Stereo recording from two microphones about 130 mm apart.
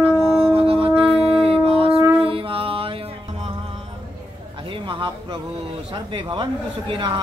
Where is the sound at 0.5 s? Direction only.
45° right (ahead or behind).